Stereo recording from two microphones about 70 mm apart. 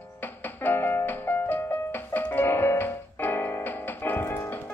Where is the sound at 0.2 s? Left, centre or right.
Left.